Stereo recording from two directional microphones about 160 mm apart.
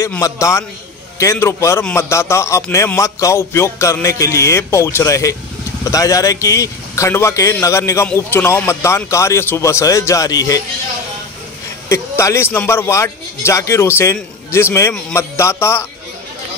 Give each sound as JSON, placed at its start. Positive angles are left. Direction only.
{"t": 0.0, "sound": "music", "side_deg": 20}
{"t": 5.9, "sound": "speech", "side_deg": 20}
{"t": 7.6, "sound": "music", "side_deg": 20}
{"t": 11.9, "sound": "music", "side_deg": 20}